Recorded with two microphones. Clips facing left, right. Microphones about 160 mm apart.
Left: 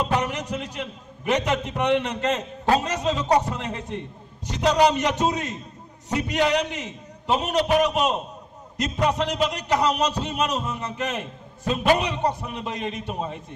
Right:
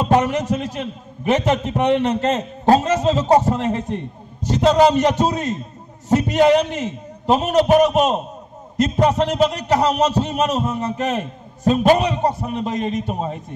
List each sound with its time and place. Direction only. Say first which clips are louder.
0.1 s a man's voice: right 8 dB; 40° right (ahead or behind)